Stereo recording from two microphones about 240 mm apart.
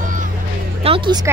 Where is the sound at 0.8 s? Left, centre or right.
Right.